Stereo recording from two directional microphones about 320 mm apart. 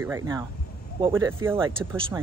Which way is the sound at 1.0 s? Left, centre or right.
Centre.